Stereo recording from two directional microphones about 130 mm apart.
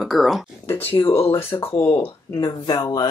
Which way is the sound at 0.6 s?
15° left (ahead or behind).